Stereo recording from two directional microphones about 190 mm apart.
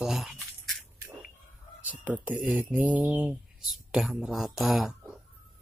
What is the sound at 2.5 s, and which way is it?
Speech, 10° right (ahead or behind).